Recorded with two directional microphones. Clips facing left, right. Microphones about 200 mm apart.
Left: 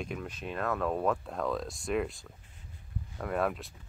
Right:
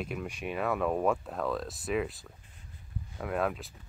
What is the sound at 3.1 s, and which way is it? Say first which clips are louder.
Speech: even; centre (ahead or behind).